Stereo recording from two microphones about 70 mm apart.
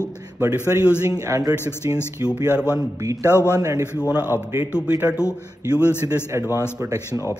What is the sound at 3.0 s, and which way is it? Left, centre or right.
Speech, right.